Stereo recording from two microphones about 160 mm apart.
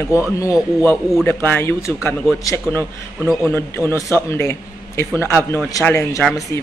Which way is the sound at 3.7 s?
15° left (ahead or behind).